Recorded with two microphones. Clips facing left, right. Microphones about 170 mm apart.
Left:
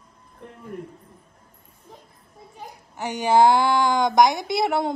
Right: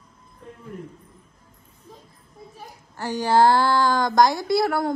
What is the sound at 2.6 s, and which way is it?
A child's voice, 20° left (ahead or behind).